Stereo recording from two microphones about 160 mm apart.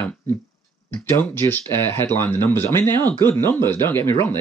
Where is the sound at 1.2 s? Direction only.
10° left (ahead or behind).